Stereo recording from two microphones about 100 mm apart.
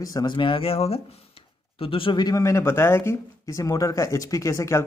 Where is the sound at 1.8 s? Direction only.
65° left (ahead or behind).